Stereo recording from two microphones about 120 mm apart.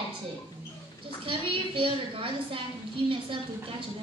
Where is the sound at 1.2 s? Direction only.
45° right (ahead or behind).